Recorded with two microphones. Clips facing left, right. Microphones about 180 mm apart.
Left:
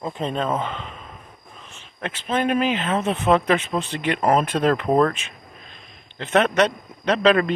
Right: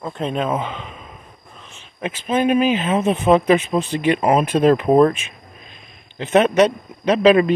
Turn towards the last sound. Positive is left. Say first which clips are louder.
# right 4 dB
turn(degrees=-15)  # may be behind; listen again after turning